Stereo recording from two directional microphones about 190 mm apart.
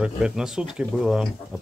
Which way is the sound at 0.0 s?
5° right (ahead or behind).